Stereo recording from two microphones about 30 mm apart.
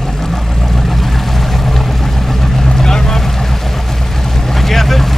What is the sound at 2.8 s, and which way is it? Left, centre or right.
Boat, centre.